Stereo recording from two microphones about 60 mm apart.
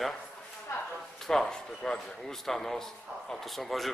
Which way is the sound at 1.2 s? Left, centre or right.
Centre.